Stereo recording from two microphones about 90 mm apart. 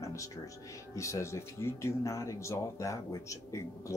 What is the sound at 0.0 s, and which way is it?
Music, 35° left (ahead or behind).